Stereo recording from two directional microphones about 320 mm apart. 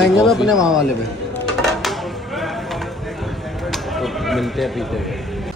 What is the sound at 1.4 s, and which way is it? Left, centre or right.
Music, centre.